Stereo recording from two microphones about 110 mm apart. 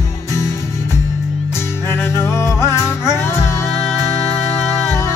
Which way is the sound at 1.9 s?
25° left (ahead or behind).